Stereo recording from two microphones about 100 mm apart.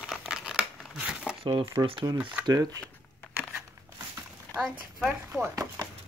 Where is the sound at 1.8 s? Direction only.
35° right (ahead or behind).